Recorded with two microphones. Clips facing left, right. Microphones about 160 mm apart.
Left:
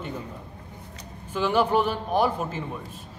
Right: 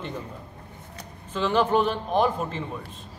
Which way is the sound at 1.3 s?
10° left (ahead or behind).